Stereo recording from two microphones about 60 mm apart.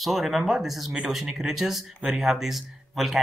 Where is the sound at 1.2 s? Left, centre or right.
Centre.